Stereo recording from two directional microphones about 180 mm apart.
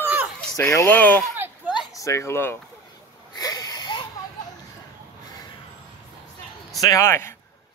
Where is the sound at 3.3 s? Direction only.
20° left (ahead or behind).